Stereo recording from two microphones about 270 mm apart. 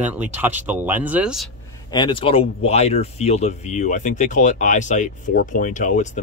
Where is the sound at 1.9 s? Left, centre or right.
Centre.